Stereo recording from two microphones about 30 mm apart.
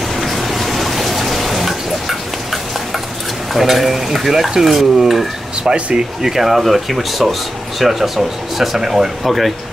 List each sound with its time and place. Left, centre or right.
0.1 s water: centre
3.5 s speech: centre
5.7 s speech: right
6.2 s speech: centre
6.6 s speech: centre